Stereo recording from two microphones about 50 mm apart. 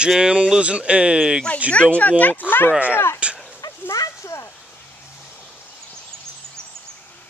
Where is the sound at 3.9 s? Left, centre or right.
Left.